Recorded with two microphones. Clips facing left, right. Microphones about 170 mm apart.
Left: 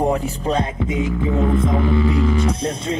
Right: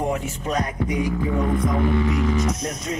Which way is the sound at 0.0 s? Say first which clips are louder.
Left 5 dB; 30° left (ahead or behind).